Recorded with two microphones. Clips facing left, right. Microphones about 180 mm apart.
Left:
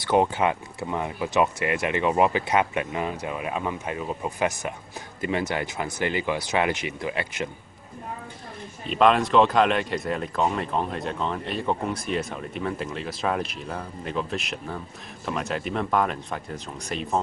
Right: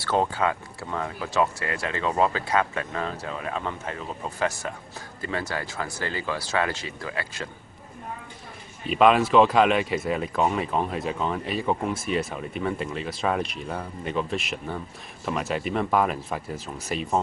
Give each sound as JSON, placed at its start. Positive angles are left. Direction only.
{"t": 0.0, "sound": "speech", "side_deg": 15}
{"t": 8.8, "sound": "speech", "side_deg": -5}